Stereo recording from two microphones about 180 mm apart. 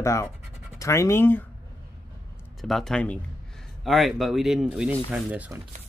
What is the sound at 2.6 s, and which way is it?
Speech, centre (ahead or behind).